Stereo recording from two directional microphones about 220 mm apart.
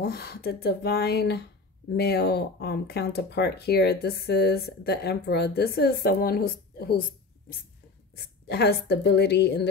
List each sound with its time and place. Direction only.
0.0 s speech: 45° left (ahead or behind)